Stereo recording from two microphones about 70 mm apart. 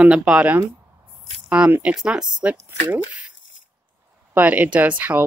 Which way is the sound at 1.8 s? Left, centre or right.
Centre.